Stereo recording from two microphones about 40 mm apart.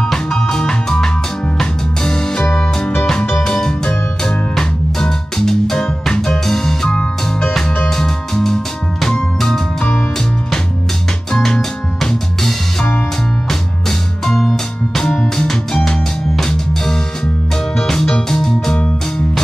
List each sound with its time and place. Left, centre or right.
0.0 s music: centre
3.4 s music: centre